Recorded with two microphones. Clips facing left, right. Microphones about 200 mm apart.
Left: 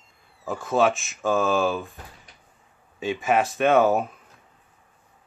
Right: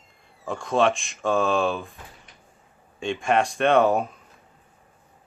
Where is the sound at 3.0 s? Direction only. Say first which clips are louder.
Even; 5° left (ahead or behind).